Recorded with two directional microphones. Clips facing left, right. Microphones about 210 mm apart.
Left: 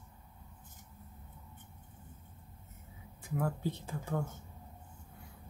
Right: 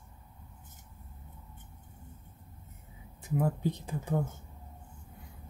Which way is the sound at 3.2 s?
20° right (ahead or behind).